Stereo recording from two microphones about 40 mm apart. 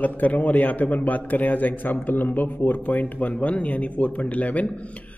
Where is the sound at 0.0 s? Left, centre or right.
Left.